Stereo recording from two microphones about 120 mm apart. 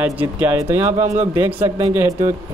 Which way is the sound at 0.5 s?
25° right (ahead or behind).